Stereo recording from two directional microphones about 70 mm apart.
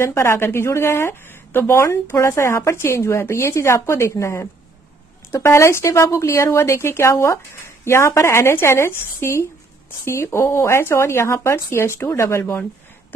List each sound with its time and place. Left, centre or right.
0.0 s speech: left